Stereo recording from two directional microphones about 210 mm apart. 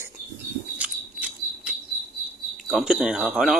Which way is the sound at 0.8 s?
5° right (ahead or behind).